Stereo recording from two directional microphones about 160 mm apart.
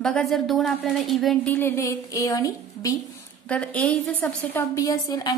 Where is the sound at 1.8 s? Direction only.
20° left (ahead or behind).